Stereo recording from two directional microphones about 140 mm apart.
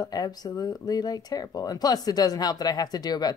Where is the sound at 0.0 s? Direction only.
25° left (ahead or behind).